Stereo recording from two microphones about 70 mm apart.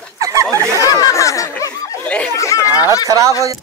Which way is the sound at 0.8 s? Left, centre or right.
Left.